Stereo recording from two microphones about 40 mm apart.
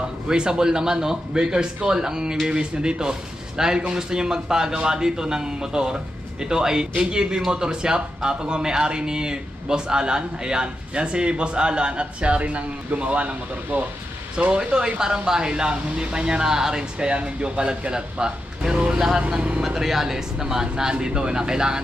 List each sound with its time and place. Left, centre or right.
0.3 s speech: centre; by 13.8 s right
14.3 s speech: right